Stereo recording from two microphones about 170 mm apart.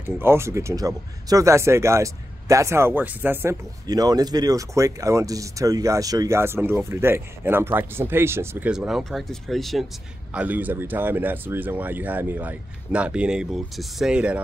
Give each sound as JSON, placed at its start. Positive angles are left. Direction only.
{"t": 0.2, "sound": "speech", "side_deg": -15}
{"t": 3.8, "sound": "speech", "side_deg": -20}